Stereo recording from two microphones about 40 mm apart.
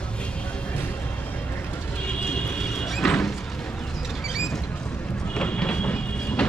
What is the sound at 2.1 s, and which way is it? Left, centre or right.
Vehicle, left.